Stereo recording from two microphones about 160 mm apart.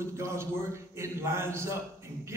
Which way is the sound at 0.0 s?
15° right (ahead or behind).